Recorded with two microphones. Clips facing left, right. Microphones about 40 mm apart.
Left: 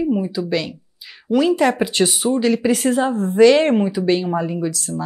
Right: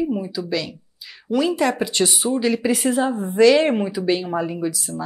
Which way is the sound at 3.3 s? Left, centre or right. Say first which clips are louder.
Left 2 dB; centre.